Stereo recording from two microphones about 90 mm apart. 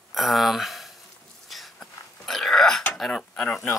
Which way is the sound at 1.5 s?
Centre (ahead or behind).